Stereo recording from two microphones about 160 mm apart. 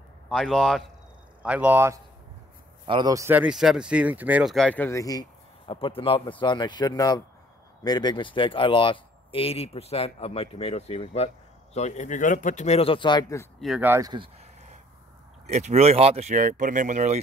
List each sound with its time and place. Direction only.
0.3 s speech: centre (ahead or behind)
1.4 s speech: 10° right (ahead or behind)
2.9 s speech: 25° right (ahead or behind); by 13.2 s 30° left (ahead or behind)
13.6 s speech: centre (ahead or behind)
13.8 s speech: 15° right (ahead or behind)
14.1 s speech: 35° right (ahead or behind)
15.4 s speech: 45° right (ahead or behind)